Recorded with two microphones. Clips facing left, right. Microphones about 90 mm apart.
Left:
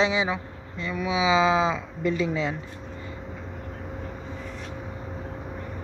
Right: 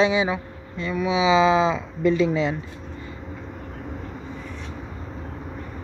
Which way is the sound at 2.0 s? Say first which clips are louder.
Right 6 dB; 90° right.